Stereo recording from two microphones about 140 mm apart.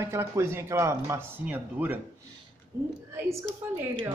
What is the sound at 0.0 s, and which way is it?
Speech, 20° right (ahead or behind).